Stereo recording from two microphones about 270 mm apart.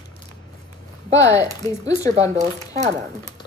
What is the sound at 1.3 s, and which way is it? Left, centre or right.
Speech, centre.